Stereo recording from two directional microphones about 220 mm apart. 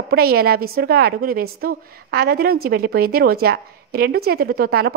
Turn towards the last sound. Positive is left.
turn(degrees=-45)  # may be behind; listen again after turning